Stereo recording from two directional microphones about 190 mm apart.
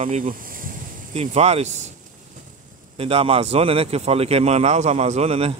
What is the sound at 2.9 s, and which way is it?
A man's voice, 30° right (ahead or behind).